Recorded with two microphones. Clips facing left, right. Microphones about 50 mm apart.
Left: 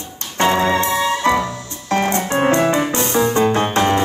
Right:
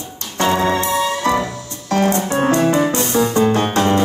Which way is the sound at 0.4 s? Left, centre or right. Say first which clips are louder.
Left 1 dB; left.